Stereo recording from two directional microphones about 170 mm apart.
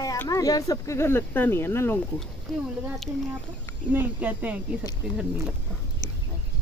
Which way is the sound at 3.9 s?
10° right (ahead or behind).